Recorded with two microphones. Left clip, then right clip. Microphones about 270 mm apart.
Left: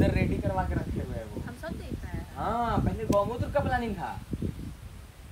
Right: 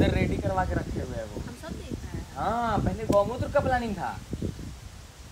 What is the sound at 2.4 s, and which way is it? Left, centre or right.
Speech, centre.